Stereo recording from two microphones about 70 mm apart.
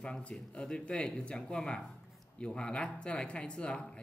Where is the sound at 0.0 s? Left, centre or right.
Centre.